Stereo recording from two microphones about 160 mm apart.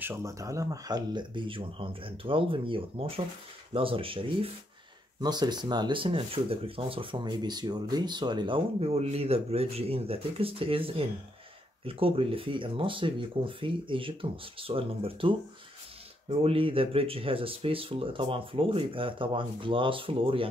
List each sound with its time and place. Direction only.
0.0 s speech: 15° right (ahead or behind); by 20.4 s 35° right (ahead or behind)